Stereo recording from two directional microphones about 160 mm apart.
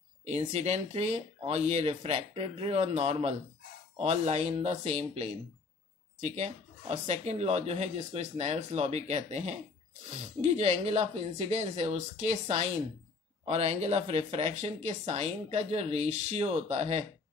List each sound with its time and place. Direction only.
0.2 s speech: 45° right (ahead or behind)